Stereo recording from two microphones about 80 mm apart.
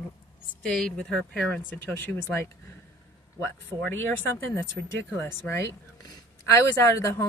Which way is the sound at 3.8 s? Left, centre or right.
Left.